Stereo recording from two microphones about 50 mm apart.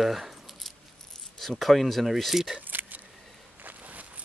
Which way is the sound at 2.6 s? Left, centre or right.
Right.